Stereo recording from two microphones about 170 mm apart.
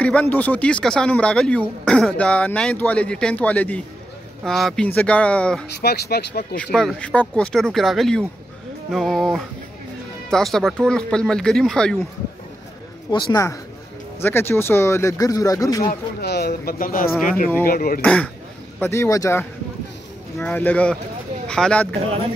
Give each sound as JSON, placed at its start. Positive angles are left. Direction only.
{"t": 0.0, "sound": "speech", "side_deg": 10}
{"t": 5.8, "sound": "speech", "side_deg": 70}
{"t": 6.5, "sound": "speech", "side_deg": 5}
{"t": 13.1, "sound": "speech", "side_deg": 20}
{"t": 15.9, "sound": "speech", "side_deg": 70}
{"t": 18.0, "sound": "speech", "side_deg": 5}